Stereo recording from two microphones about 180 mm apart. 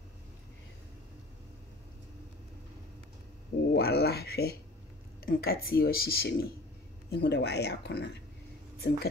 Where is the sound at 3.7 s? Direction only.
60° left (ahead or behind).